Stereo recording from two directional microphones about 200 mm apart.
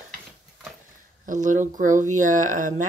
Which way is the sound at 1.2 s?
40° right (ahead or behind).